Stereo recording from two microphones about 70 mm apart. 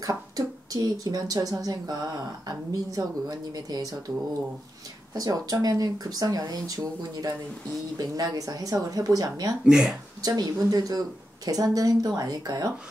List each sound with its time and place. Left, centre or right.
0.0 s speech: right
5.1 s speech: right
9.7 s speech: centre
10.2 s speech: right